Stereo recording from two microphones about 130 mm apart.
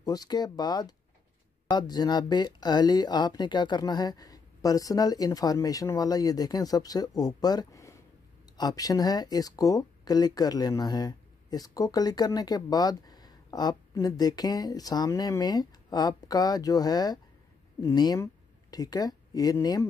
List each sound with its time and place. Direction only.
0.0 s speech: 30° left (ahead or behind)